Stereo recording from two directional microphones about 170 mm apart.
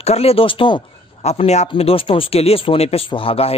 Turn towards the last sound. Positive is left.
turn(degrees=35)  # may be behind; listen again after turning